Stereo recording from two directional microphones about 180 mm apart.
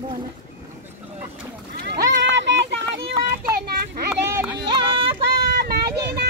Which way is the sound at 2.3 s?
80° right.